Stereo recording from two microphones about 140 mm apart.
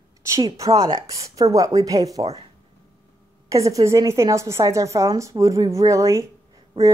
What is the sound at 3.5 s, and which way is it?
Speech, 25° right (ahead or behind).